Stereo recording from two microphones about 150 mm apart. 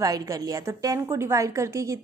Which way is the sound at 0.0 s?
25° right (ahead or behind).